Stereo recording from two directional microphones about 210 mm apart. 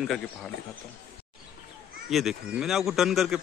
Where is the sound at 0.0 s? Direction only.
Centre (ahead or behind).